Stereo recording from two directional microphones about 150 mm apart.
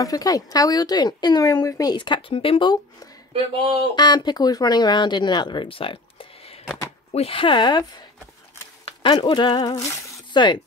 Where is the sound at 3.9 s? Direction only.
30° left (ahead or behind).